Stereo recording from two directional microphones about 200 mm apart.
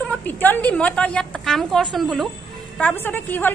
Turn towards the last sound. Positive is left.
turn(degrees=10)  # may be behind; listen again after turning